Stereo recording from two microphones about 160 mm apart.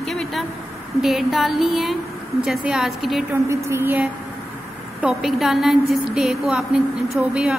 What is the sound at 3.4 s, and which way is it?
A woman's voice, 15° right (ahead or behind).